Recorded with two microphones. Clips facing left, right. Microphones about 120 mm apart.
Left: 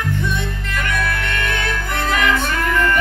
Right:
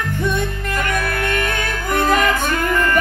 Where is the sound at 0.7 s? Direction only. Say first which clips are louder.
Right 1 dB; 40° right (ahead or behind).